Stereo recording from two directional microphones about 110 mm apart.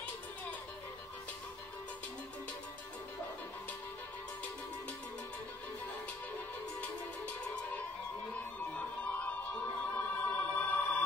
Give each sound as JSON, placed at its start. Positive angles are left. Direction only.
{"t": 9.9, "sound": "music", "side_deg": 15}